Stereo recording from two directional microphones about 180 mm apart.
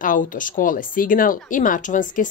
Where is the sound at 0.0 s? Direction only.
45° left (ahead or behind).